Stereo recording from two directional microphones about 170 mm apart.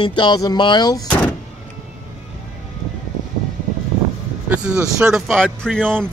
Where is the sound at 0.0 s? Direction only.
25° left (ahead or behind).